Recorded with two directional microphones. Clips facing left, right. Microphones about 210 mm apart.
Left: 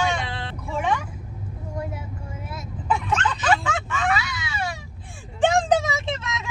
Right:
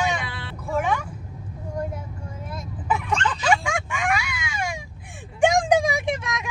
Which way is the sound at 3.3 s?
10° right (ahead or behind).